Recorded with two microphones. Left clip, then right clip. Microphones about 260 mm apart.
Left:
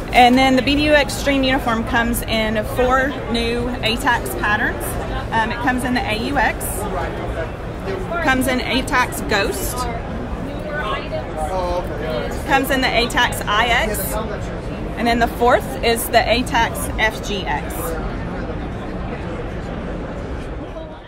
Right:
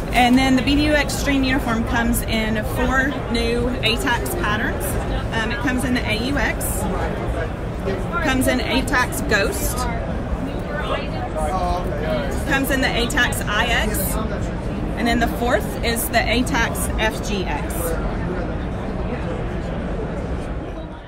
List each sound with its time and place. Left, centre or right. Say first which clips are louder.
0.1 s a woman's voice: left 5 dB; left
8.2 s a woman's voice: left 2 dB; left
12.4 s speech: left 4 dB; left
15.0 s a woman's voice: left 4 dB; left